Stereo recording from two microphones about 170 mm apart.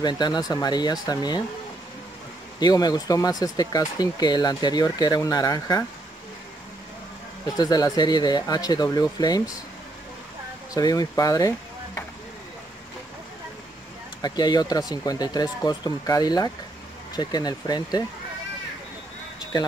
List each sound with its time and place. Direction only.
0.0 s speech: 25° left (ahead or behind)
2.6 s speech: 25° left (ahead or behind)
7.4 s speech: 20° left (ahead or behind)
10.7 s speech: 20° left (ahead or behind)
14.2 s speech: 25° left (ahead or behind)